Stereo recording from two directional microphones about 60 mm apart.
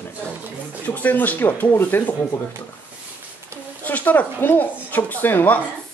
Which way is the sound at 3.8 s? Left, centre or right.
Left.